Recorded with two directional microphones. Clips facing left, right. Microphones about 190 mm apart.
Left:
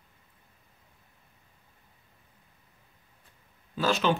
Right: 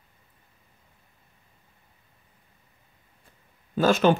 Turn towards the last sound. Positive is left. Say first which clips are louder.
# right 6 dB
turn(degrees=-50)  # may be behind; listen again after turning